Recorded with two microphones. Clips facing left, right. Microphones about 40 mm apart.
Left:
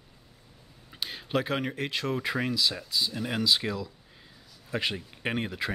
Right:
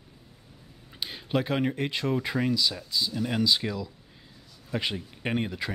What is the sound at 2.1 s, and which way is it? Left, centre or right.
Speech, centre.